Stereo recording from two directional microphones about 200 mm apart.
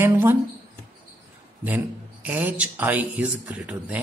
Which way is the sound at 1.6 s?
10° right (ahead or behind).